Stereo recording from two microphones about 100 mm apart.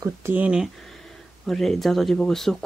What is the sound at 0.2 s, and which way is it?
Speech, 15° right (ahead or behind).